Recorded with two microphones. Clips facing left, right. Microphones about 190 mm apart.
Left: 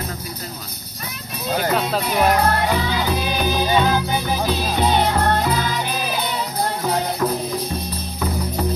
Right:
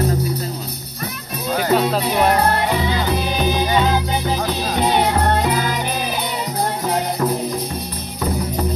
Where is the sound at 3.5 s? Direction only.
15° right (ahead or behind).